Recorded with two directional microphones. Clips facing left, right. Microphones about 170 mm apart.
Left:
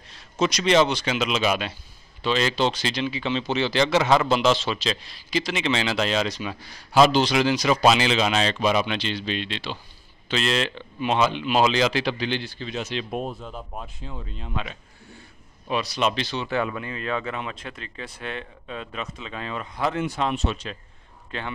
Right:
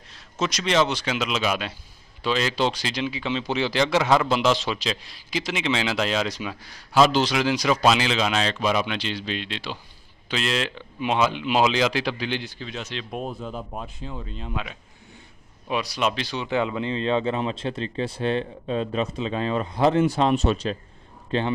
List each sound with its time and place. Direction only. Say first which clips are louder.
0.4 s speech: left 3 dB; centre (ahead or behind)
4.4 s speech: left 1 dB; 15° right (ahead or behind)
12.6 s speech: left 4 dB; 5° left (ahead or behind); by 21.5 s 30° right (ahead or behind)